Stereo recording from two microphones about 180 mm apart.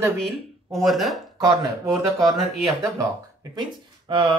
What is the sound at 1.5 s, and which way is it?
Speech, 15° right (ahead or behind).